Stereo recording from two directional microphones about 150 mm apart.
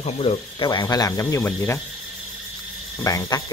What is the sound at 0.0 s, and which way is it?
Speech, 40° left (ahead or behind).